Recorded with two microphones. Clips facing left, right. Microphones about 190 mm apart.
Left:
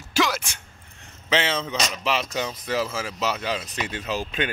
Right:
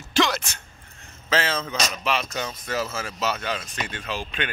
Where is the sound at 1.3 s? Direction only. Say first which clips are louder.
Left 1 dB; 20° left (ahead or behind).